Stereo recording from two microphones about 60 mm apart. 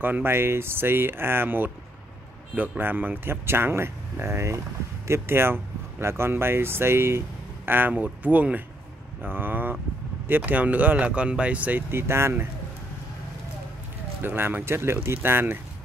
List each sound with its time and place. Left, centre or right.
0.0 s speech: right
2.8 s speech: right
7.9 s speech: right
11.9 s speech: right
14.2 s speech: right